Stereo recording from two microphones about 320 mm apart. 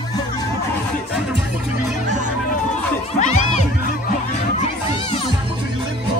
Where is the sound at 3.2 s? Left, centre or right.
Left.